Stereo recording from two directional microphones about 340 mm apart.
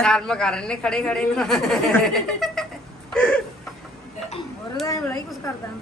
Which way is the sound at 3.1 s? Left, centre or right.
Centre.